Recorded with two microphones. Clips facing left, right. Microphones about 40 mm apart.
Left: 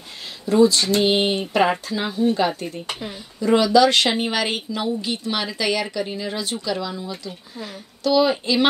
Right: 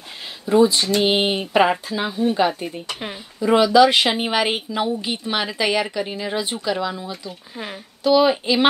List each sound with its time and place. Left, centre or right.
0.5 s a woman's voice: centre
1.7 s a woman's voice: centre
7.5 s speech: right
8.0 s a woman's voice: centre